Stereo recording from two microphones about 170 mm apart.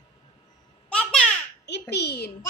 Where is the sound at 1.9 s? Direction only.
75° left (ahead or behind).